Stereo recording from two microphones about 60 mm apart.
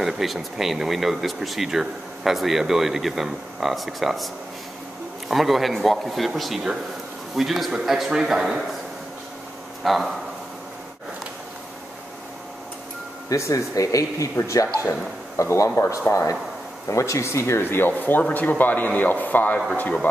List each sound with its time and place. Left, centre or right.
0.0 s speech: centre
5.3 s speech: centre
9.8 s speech: centre
13.3 s speech: left
15.7 s speech: left
16.1 s speech: left
17.6 s speech: left